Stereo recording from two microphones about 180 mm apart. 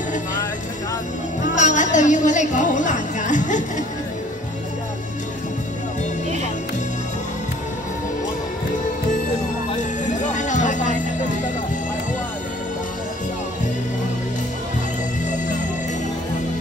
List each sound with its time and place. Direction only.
1.4 s music: 40° left (ahead or behind)
10.3 s music: 45° left (ahead or behind)